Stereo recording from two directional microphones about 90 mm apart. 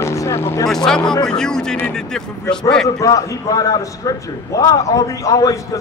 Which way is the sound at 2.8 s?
40° left (ahead or behind).